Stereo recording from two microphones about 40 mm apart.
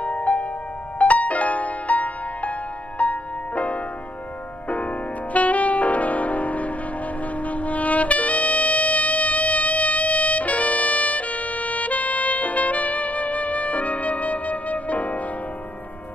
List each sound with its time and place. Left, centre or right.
0.0 s music: left